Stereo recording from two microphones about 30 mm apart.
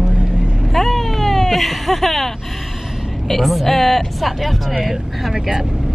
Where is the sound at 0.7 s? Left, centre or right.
Centre.